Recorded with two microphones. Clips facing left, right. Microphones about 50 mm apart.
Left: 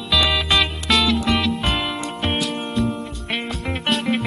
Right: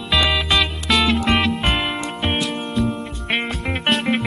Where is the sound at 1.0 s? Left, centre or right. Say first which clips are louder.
Right 2 dB; right.